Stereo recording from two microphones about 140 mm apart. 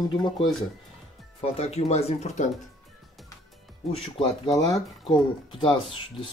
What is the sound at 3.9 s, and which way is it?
Speech, 40° left (ahead or behind).